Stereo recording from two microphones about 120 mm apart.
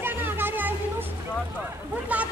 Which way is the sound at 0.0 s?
15° right (ahead or behind).